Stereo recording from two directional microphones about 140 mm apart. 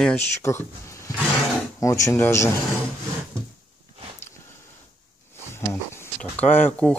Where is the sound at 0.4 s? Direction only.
20° left (ahead or behind).